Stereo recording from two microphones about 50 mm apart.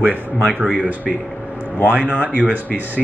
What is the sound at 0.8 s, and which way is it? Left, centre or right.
Speech, right.